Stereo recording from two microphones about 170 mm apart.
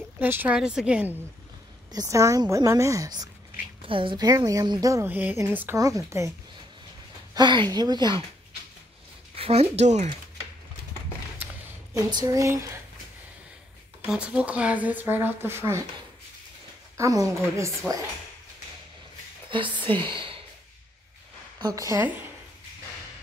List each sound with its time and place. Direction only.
0.2 s speech: 10° right (ahead or behind)
1.9 s a woman's voice: 20° right (ahead or behind)
7.3 s a woman's voice: 25° right (ahead or behind)
9.4 s speech: 35° right (ahead or behind)
11.9 s a woman's voice: 20° right (ahead or behind)
14.0 s speech: 5° right (ahead or behind)
16.9 s a woman's voice: 20° right (ahead or behind)
19.5 s a woman's voice: 30° right (ahead or behind)
21.5 s a woman's voice: 20° right (ahead or behind)